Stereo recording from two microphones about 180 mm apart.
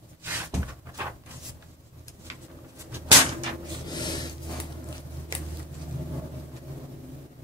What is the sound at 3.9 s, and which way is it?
Rub, 25° left (ahead or behind).